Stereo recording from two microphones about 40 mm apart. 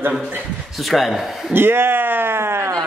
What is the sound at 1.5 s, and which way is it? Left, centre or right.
Speech, right.